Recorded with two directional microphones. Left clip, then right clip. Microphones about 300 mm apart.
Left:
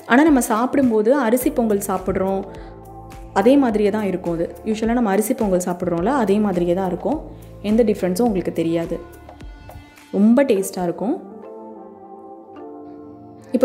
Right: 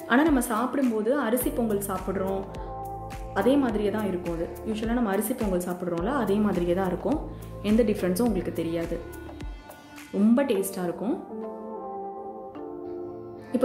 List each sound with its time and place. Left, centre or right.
0.1 s a woman's voice: left
10.2 s a woman's voice: centre